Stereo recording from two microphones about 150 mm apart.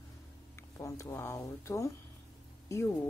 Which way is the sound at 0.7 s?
20° left (ahead or behind).